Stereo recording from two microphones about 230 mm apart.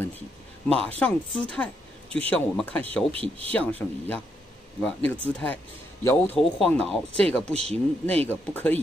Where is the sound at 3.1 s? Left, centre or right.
Right.